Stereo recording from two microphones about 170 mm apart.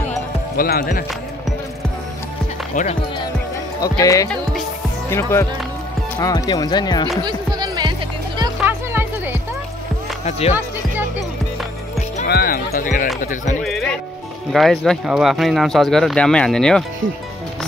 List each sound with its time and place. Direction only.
0.6 s speech: 60° left (ahead or behind)
2.7 s speech: 50° left (ahead or behind)
4.0 s speech: 20° left (ahead or behind)
7.2 s music: 25° right (ahead or behind)
8.5 s music: 10° right (ahead or behind)
12.3 s speech: 60° left (ahead or behind)
13.6 s speech: centre (ahead or behind)